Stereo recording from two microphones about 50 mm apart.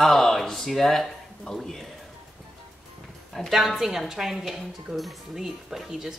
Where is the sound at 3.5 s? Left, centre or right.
Centre.